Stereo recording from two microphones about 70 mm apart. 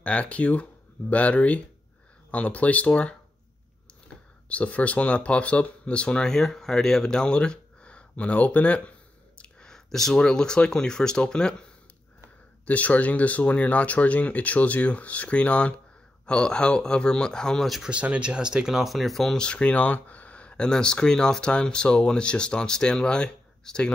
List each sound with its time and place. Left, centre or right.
0.0 s speech: centre
4.5 s speech: centre
12.6 s speech: left; by 17.8 s centre
17.8 s speech: centre